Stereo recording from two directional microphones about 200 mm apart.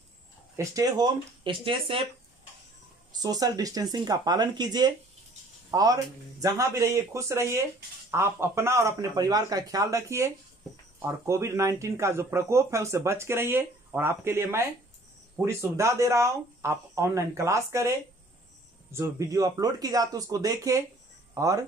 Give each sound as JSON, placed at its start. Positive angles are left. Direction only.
{"t": 0.6, "sound": "speech", "side_deg": -20}
{"t": 3.1, "sound": "speech", "side_deg": -20}